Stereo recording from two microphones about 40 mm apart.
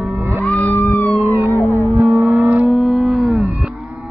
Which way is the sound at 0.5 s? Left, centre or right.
Left.